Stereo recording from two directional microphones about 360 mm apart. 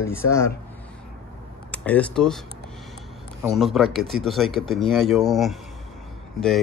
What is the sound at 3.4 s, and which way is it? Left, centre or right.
Speech, centre.